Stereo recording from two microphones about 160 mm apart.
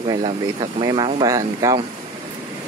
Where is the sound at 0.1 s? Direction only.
30° right (ahead or behind).